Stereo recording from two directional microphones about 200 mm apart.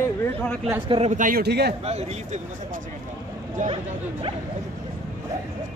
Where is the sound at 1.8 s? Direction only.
30° right (ahead or behind).